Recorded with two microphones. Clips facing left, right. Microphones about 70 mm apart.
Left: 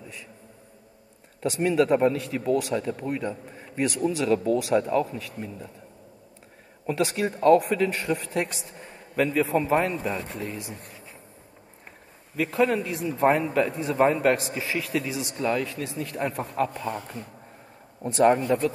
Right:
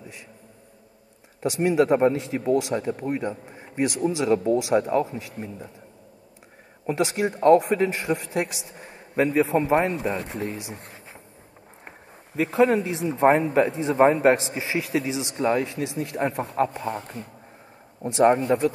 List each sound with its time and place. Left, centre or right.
1.4 s a man's voice: centre
3.6 s a sound: right
4.1 s a man's voice: right
6.9 s a man's voice: right
8.7 s a sound: centre
9.1 s a man's voice: right
10.7 s speech: right
12.4 s a man's voice: right
18.0 s a man's voice: centre